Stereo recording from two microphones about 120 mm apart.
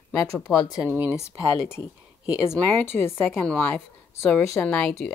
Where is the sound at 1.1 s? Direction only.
20° left (ahead or behind).